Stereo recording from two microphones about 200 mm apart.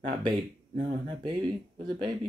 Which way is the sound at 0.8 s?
25° right (ahead or behind).